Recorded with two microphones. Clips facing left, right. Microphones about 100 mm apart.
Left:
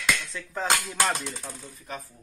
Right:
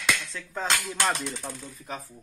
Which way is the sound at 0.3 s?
Centre (ahead or behind).